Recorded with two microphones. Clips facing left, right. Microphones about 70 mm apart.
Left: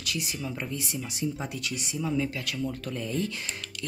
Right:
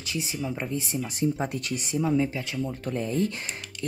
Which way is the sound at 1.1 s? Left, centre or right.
Right.